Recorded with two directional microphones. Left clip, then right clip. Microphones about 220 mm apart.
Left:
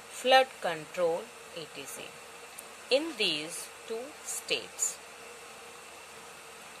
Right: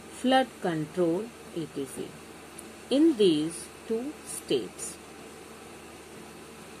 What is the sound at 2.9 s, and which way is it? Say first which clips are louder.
Speech: right 6 dB; 25° left (ahead or behind).